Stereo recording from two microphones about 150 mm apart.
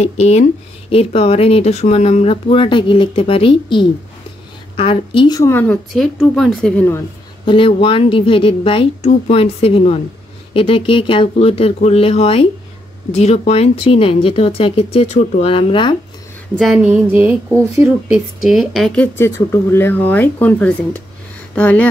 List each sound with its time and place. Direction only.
0.0 s speech: 45° left (ahead or behind)
5.4 s speech: 15° left (ahead or behind)
6.3 s speech: centre (ahead or behind)
7.4 s speech: 35° left (ahead or behind)
15.5 s speech: 35° left (ahead or behind)
16.5 s speech: centre (ahead or behind)
18.1 s speech: 5° right (ahead or behind); by 21.8 s 10° left (ahead or behind)